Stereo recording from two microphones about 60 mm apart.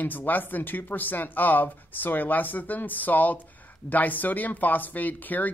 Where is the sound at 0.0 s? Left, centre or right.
Left.